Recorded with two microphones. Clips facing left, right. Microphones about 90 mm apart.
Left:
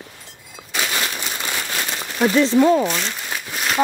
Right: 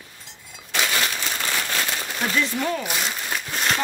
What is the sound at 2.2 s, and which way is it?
Speech, 25° left (ahead or behind).